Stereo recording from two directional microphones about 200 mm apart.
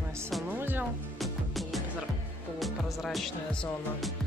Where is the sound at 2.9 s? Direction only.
Centre (ahead or behind).